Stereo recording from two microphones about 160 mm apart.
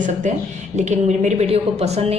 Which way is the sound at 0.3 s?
45° right (ahead or behind).